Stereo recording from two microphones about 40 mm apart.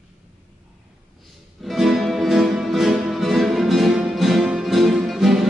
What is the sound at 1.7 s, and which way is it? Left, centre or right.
Music, centre.